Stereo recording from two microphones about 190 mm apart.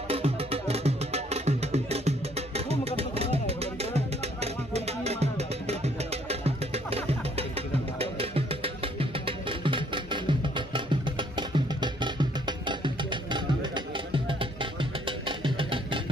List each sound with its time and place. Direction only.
0.1 s music: 30° right (ahead or behind)